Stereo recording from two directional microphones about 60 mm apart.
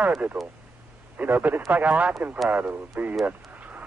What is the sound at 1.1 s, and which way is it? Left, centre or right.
A man's voice, right.